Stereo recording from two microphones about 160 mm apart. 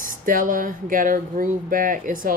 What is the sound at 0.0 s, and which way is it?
Speech, 60° right (ahead or behind).